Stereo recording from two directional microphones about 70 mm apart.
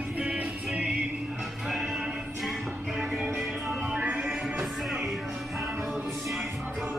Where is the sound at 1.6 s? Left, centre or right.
Centre.